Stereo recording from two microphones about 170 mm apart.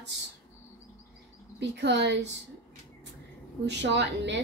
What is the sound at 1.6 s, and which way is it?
Speech, 90° right.